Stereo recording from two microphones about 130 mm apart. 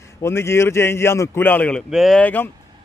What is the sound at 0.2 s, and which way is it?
A man's voice, 20° left (ahead or behind).